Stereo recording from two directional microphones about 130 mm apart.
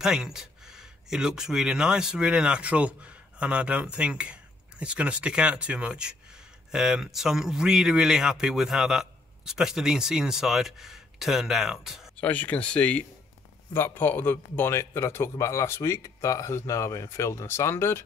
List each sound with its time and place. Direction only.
0.0 s a man's voice: 5° right (ahead or behind)
12.2 s a man's voice: 10° left (ahead or behind)